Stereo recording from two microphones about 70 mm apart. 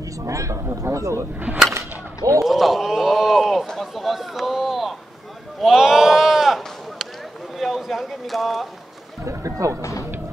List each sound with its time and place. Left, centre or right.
0.2 s speech: right
1.7 s whip: right
2.4 s speech: centre
9.2 s speech: right
9.8 s speech: left